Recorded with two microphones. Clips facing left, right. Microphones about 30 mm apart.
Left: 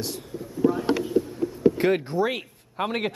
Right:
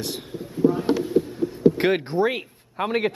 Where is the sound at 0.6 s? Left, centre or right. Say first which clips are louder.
Right 2 dB; right.